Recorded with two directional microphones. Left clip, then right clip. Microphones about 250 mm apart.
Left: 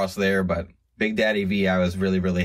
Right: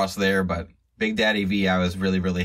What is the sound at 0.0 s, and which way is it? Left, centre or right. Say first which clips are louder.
Speech: even; centre.